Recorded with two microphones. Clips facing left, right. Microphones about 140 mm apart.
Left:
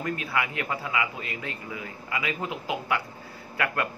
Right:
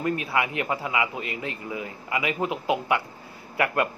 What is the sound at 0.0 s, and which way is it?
Speech, 25° right (ahead or behind).